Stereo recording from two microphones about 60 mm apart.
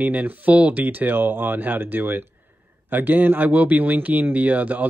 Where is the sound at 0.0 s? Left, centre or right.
Right.